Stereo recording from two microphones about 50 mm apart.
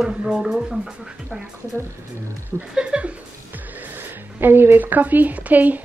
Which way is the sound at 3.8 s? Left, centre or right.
Right.